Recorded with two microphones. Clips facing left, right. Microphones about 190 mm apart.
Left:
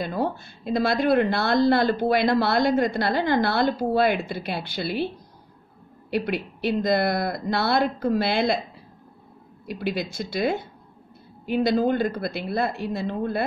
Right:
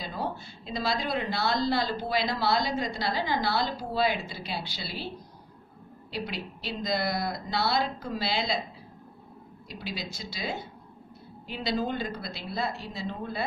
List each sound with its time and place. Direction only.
0.0 s speech: 55° left (ahead or behind)
6.0 s speech: 55° left (ahead or behind)
9.7 s speech: 55° left (ahead or behind)